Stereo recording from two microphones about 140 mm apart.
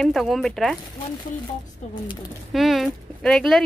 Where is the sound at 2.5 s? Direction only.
Centre (ahead or behind).